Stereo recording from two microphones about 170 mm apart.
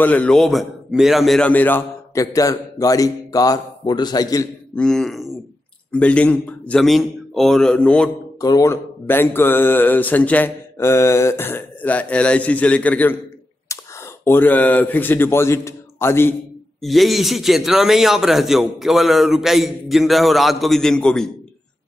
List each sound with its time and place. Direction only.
0.0 s a man's voice: 10° left (ahead or behind)
4.7 s a man's voice: 5° left (ahead or behind)
8.4 s speech: 20° left (ahead or behind)
13.7 s a sound: 15° left (ahead or behind)
14.2 s speech: 10° left (ahead or behind)
16.8 s a man's voice: centre (ahead or behind)